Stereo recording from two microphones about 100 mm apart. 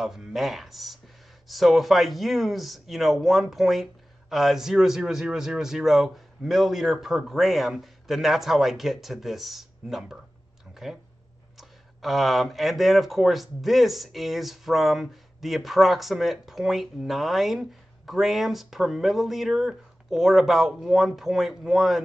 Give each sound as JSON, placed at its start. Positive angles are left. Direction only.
{"t": 0.0, "sound": "speech", "side_deg": -5}
{"t": 10.7, "sound": "a sound", "side_deg": -5}
{"t": 11.5, "sound": "speech", "side_deg": 0}